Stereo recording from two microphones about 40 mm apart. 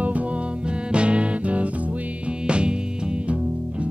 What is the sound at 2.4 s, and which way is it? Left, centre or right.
Music, right.